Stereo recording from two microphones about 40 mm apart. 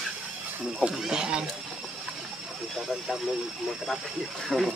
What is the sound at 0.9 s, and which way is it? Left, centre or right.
Speech, centre.